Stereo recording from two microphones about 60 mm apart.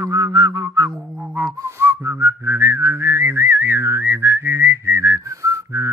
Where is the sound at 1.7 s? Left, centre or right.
Right.